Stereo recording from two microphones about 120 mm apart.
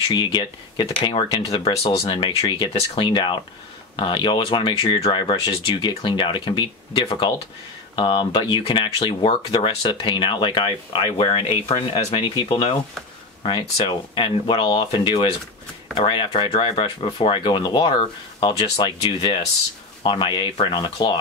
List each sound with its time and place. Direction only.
0.1 s speech: 40° left (ahead or behind); by 1.9 s 55° left (ahead or behind)
1.9 s speech: 40° left (ahead or behind)